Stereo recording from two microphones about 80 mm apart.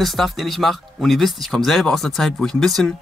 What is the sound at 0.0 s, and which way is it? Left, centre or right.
Speech, centre.